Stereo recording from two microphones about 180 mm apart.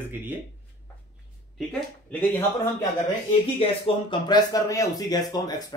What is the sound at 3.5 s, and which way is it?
Speech, 30° left (ahead or behind).